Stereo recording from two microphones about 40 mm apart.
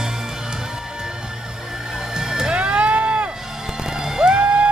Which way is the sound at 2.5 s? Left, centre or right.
Right.